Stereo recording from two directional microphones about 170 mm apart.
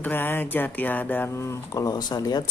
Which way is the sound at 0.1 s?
10° left (ahead or behind).